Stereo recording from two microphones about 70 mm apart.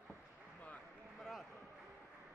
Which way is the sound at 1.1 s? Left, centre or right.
Centre.